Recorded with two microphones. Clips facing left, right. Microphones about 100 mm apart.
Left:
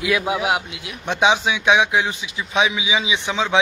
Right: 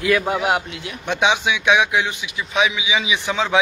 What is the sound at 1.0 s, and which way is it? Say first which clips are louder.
A man's voice: left 1 dB; 30° left (ahead or behind).